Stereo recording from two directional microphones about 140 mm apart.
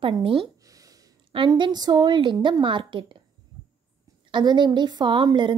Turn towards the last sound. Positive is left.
turn(degrees=-35)  # may be behind; listen again after turning